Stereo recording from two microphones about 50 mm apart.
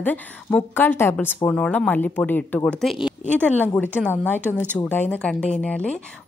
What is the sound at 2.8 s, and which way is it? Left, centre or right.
Speech, centre.